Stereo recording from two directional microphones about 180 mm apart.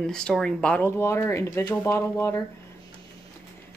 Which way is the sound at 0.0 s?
5° left (ahead or behind).